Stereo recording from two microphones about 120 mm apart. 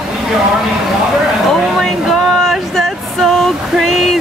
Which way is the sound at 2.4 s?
Centre (ahead or behind).